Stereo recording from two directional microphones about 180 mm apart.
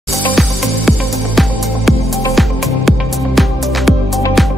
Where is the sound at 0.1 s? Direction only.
5° left (ahead or behind).